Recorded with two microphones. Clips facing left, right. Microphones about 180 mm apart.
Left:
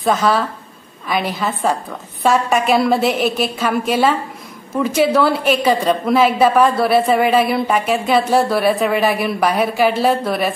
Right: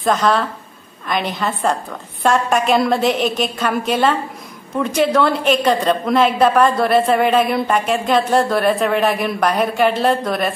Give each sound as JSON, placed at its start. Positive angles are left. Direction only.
{"t": 0.0, "sound": "a woman's voice", "side_deg": 5}